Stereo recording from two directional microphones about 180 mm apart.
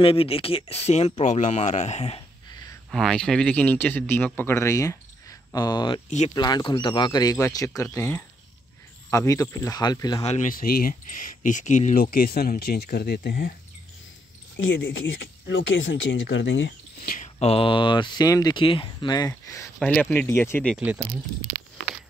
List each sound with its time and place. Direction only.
0.0 s speech: 30° left (ahead or behind)
2.9 s speech: 5° left (ahead or behind); by 5.9 s 25° left (ahead or behind)
6.0 s speech: 40° left (ahead or behind)
6.3 s speech: 25° left (ahead or behind)
10.2 s speech: 35° left (ahead or behind)
10.5 s speech: 55° left (ahead or behind)
14.6 s speech: 90° left; by 17.3 s 55° left (ahead or behind)
17.4 s speech: 30° left (ahead or behind)
19.8 s speech: 5° left (ahead or behind)
20.7 s speech: 10° right (ahead or behind)